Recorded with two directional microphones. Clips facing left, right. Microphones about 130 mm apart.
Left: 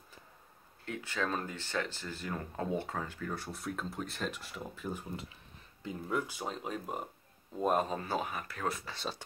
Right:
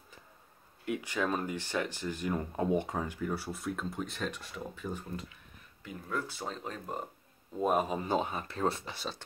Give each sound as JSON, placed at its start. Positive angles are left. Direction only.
{"t": 0.8, "sound": "speech", "side_deg": -15}
{"t": 5.1, "sound": "speech", "side_deg": 25}
{"t": 7.5, "sound": "a man's voice", "side_deg": -5}
{"t": 7.9, "sound": "speech", "side_deg": -20}